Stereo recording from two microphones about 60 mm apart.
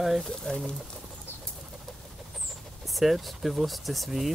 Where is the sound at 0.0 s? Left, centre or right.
Centre.